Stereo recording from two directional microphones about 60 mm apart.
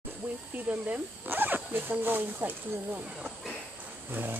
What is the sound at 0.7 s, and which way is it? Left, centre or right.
Speech, right.